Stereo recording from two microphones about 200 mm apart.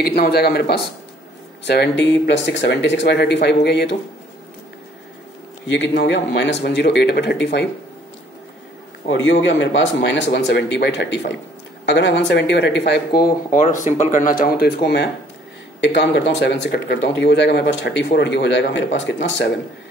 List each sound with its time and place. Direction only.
0.0 s speech: 50° left (ahead or behind)
5.7 s speech: 60° left (ahead or behind)
9.0 s speech: 70° left (ahead or behind)
13.5 s speech: 40° left (ahead or behind); by 19.5 s 65° left (ahead or behind)